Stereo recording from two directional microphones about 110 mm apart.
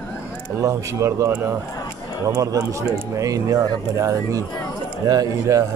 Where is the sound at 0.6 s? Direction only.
30° right (ahead or behind).